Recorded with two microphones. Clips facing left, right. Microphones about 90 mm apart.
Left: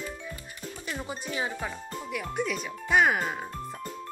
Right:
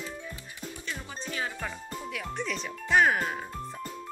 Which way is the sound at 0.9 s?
15° left (ahead or behind).